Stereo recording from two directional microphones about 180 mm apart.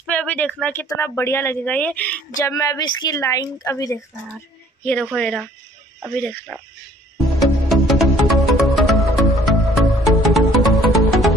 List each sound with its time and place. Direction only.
0.0 s a sound: 5° left (ahead or behind)
0.6 s speech: 10° left (ahead or behind)
2.3 s a woman's voice: 20° left (ahead or behind)
5.0 s speech: centre (ahead or behind)
7.3 s music: centre (ahead or behind)